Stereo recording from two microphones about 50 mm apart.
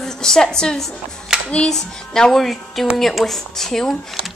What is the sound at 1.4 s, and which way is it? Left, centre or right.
Speech, left.